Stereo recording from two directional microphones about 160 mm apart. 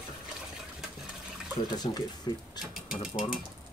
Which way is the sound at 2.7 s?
5° right (ahead or behind).